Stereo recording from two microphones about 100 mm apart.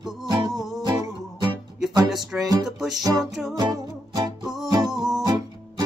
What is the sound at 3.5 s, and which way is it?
Music, 40° right (ahead or behind).